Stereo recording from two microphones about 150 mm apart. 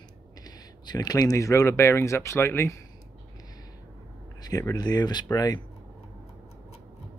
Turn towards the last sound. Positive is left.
turn(degrees=25)  # may be behind; listen again after turning